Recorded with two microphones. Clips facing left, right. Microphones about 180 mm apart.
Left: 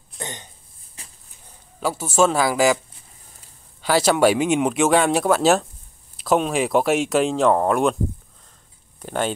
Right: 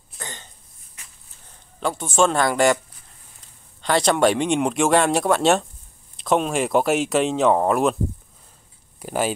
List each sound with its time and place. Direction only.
0.2 s cough: 20° left (ahead or behind)
1.0 s a sound: 35° left (ahead or behind)
1.8 s speech: 5° left (ahead or behind)
3.8 s speech: 5° left (ahead or behind)
9.0 s speech: 5° right (ahead or behind)